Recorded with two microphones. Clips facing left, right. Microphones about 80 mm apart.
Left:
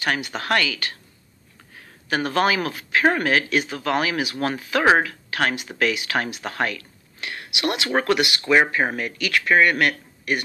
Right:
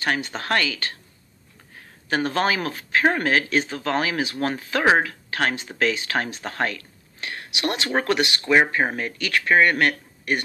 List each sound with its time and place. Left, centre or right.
0.0 s speech: right
2.0 s speech: right